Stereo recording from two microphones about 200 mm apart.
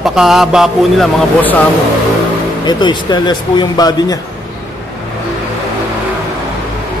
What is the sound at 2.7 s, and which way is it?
Speech, 20° left (ahead or behind).